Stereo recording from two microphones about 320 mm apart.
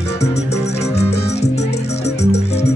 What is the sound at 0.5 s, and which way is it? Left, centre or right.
Music, centre.